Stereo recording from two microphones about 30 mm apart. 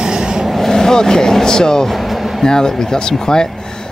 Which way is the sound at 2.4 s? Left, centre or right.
Centre.